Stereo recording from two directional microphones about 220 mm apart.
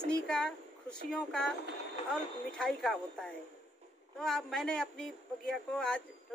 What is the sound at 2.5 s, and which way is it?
A woman's voice, 5° left (ahead or behind).